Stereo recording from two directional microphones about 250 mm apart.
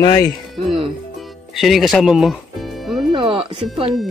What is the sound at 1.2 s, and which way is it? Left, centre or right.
Music, centre.